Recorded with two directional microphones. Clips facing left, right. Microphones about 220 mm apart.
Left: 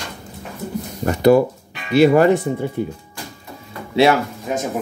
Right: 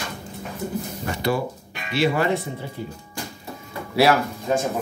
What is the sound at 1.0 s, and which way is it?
Speech, 45° left (ahead or behind).